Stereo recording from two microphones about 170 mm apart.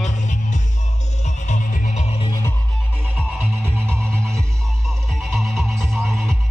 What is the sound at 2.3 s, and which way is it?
Music, 15° left (ahead or behind).